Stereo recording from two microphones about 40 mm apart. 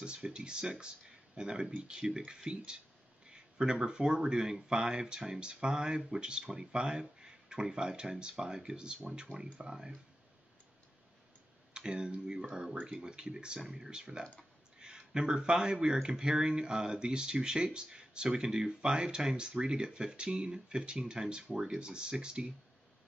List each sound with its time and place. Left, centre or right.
0.0 s speech: right
3.3 s a sound: right
3.8 s speech: right
11.7 s speech: right